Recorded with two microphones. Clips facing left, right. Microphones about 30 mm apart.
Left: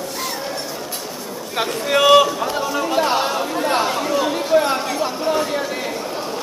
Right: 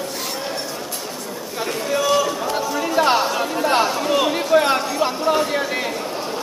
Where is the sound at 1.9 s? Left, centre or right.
Left.